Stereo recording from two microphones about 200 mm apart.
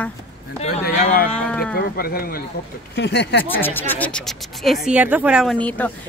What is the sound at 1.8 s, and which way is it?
Speech, 50° left (ahead or behind).